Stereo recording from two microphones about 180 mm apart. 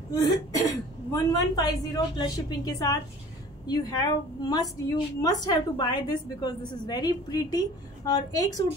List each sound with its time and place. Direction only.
0.1 s a woman's voice: 20° left (ahead or behind)